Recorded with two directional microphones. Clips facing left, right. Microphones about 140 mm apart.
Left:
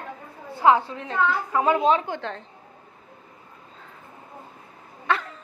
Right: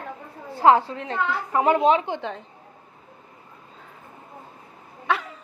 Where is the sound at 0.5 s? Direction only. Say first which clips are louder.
Right 2 dB; 30° right (ahead or behind).